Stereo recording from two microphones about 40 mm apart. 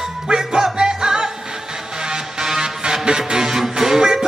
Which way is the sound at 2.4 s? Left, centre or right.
Centre.